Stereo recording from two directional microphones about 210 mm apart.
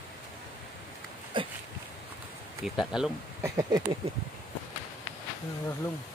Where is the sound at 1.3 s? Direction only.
25° right (ahead or behind).